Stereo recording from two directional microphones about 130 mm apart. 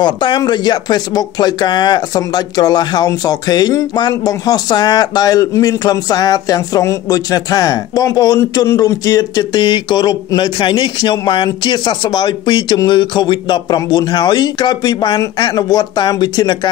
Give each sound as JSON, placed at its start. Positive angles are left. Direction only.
{"t": 0.0, "sound": "speech", "side_deg": 35}